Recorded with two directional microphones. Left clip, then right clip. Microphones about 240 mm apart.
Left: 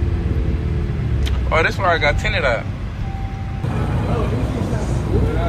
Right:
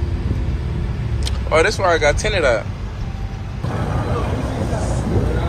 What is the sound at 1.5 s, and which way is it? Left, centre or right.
Speech, centre.